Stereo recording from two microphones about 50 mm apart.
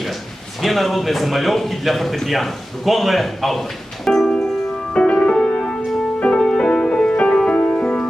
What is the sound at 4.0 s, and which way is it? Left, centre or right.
Music, centre.